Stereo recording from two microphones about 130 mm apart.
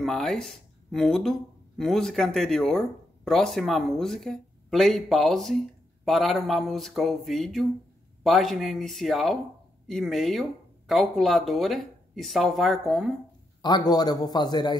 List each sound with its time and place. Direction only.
0.0 s speech: centre (ahead or behind)
13.6 s a man's voice: 35° left (ahead or behind)